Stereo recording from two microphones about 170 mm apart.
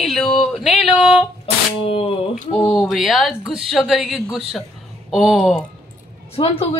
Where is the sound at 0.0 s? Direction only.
5° left (ahead or behind).